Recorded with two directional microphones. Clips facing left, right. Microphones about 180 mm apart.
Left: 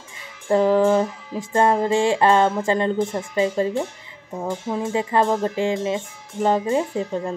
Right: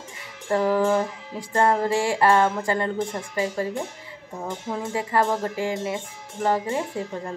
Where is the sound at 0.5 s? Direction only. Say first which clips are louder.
Left 4 dB; 20° left (ahead or behind).